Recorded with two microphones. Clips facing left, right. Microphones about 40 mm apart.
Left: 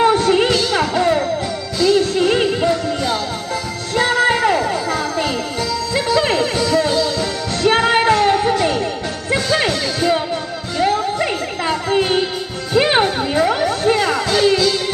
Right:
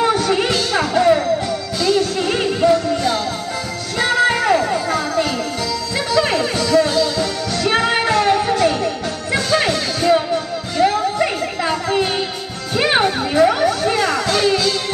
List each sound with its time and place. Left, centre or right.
0.0 s music: centre
0.5 s music: centre
2.7 s music: centre